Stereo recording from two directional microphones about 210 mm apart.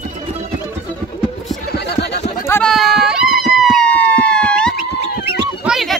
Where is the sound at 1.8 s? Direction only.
50° left (ahead or behind).